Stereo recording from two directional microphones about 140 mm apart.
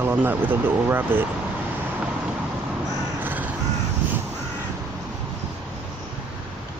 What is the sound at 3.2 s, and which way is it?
Crow, 15° right (ahead or behind).